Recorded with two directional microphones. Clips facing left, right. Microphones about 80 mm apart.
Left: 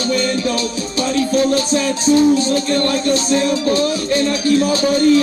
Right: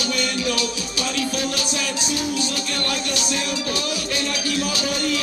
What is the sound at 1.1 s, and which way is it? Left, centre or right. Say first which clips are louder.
Music: left 11 dB; left.